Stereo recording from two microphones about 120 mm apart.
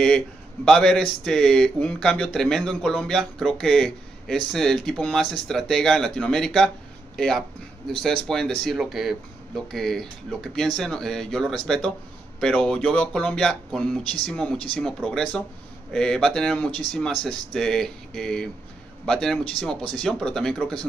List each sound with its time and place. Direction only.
0.7 s speech: 5° left (ahead or behind)